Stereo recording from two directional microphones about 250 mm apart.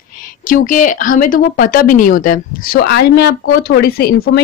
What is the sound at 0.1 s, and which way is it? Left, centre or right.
A woman's voice, left.